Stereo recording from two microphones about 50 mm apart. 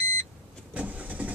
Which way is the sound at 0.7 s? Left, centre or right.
Right.